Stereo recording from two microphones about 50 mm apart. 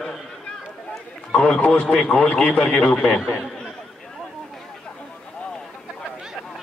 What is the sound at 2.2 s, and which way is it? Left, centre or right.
A man's voice, left.